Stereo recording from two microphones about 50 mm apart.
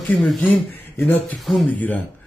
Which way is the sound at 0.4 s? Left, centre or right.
Left.